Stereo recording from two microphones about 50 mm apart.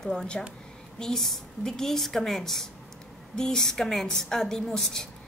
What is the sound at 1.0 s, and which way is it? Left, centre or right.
A woman's voice, centre.